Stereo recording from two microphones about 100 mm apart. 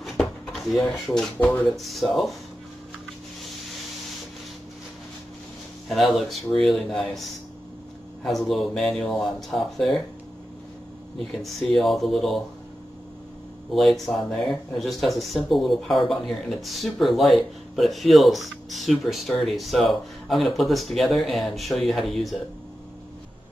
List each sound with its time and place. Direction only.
0.0 s drawer open or close: centre (ahead or behind)
1.0 s speech: 5° left (ahead or behind)
1.4 s speech: 15° left (ahead or behind)
1.8 s speech: centre (ahead or behind)
5.9 s speech: centre (ahead or behind)
8.2 s speech: centre (ahead or behind)
11.1 s speech: centre (ahead or behind)
13.7 s speech: centre (ahead or behind)